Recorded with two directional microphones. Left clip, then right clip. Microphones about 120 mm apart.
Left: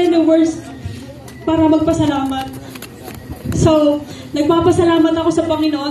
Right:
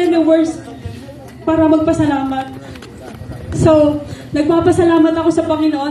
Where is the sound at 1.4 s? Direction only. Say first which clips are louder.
Right 1 dB; 20° right (ahead or behind).